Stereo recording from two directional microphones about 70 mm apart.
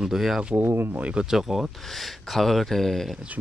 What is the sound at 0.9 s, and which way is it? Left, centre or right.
Speech, centre.